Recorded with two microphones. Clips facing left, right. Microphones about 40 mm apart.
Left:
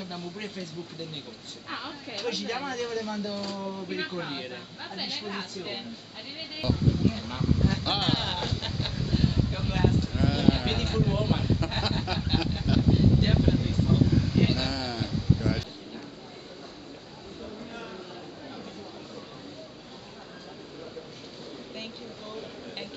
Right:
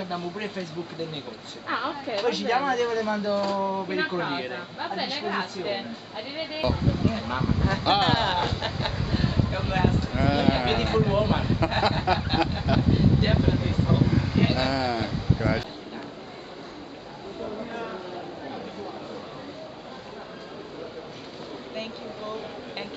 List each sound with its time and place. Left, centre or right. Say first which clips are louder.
0.0 s speech: right 6 dB; centre
1.7 s a man's voice: right 9 dB; right
2.1 s a man's voice: right 7 dB; centre